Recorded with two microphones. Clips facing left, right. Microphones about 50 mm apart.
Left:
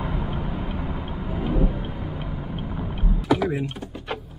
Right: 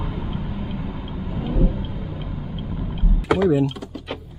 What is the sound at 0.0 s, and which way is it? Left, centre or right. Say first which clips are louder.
Vehicle: left 1 dB; centre.